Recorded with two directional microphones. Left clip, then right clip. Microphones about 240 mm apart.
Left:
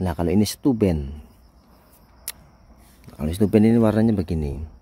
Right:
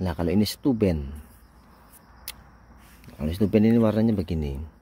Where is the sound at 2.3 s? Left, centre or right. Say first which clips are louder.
Left 2 dB; centre.